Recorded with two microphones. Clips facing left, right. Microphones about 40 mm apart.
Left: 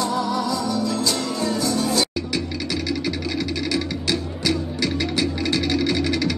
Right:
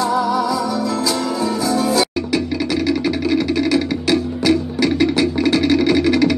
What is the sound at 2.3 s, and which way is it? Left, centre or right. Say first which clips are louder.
Music: right 10 dB; centre.